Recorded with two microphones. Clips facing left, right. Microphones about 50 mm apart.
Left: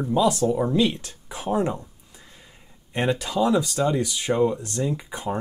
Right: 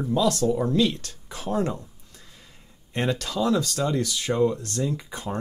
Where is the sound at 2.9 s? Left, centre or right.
Centre.